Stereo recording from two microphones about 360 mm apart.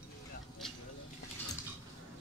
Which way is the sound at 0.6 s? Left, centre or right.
Centre.